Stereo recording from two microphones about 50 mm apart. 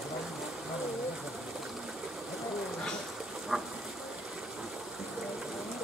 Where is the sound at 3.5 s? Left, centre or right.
Centre.